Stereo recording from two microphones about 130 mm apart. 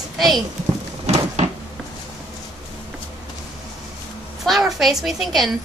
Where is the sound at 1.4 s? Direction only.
60° right (ahead or behind).